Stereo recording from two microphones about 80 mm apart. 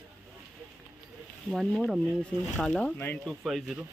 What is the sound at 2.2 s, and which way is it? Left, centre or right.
Speech, centre.